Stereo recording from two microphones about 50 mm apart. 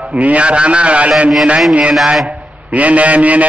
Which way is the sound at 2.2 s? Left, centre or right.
Centre.